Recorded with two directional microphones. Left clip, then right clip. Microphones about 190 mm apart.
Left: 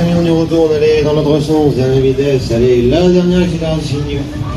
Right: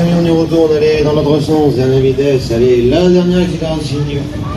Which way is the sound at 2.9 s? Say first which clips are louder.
Even; 35° right (ahead or behind).